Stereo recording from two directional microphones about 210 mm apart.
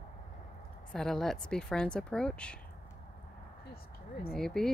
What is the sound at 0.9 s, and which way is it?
Speech, centre (ahead or behind).